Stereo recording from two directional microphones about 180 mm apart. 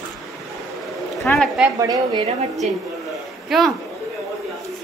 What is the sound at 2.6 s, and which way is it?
Speech, 40° right (ahead or behind).